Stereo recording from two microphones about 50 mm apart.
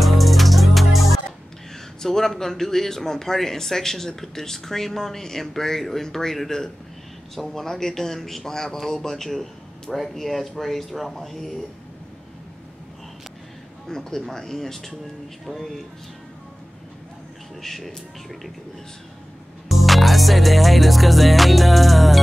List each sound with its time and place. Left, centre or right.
0.0 s music: centre
2.0 s speech: centre
13.8 s speech: centre
17.6 s speech: centre
19.7 s music: centre